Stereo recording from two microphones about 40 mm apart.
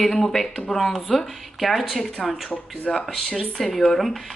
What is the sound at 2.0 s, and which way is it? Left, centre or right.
Speech, centre.